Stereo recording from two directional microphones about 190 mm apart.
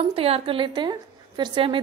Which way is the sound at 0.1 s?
30° right (ahead or behind).